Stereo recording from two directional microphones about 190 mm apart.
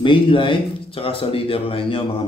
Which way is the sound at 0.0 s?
25° left (ahead or behind).